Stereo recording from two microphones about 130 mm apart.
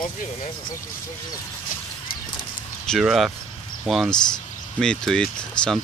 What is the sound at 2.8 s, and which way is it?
Speech, centre (ahead or behind).